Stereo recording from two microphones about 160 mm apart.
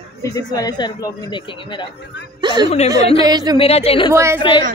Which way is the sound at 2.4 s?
25° right (ahead or behind).